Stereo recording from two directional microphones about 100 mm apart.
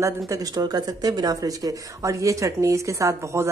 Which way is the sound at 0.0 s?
35° right (ahead or behind).